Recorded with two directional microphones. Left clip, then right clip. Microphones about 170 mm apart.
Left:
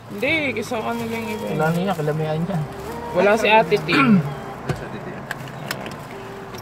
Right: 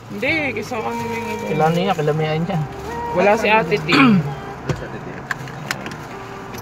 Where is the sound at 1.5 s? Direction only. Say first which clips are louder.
Right 5 dB; 30° right (ahead or behind).